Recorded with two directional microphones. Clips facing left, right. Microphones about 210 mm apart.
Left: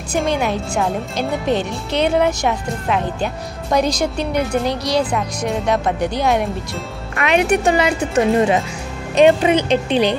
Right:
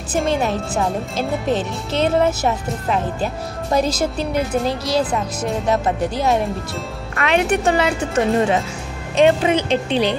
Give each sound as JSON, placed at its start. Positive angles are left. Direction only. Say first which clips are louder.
{"t": 0.1, "sound": "a woman's voice", "louder": "even", "side_deg": 0}
{"t": 3.7, "sound": "a woman's voice", "louder": "left 1 dB", "side_deg": -5}
{"t": 7.2, "sound": "speech", "louder": "left 2 dB", "side_deg": 15}